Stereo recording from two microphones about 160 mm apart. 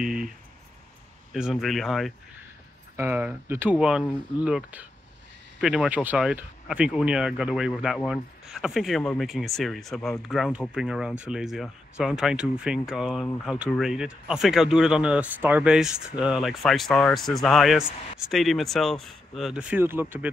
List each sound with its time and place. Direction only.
1.3 s speech: centre (ahead or behind)
3.0 s speech: 10° right (ahead or behind)